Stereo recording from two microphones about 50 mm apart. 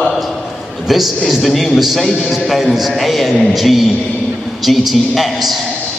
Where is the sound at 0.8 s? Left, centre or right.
Centre.